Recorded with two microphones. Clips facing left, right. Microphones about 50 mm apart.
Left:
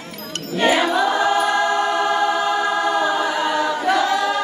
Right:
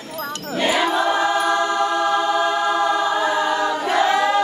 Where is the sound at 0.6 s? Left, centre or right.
Left.